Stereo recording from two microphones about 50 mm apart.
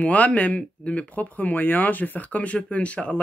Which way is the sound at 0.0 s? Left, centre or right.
Left.